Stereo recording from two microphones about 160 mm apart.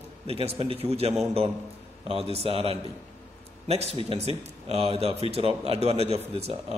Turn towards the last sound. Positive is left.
turn(degrees=-40)  # may be behind; listen again after turning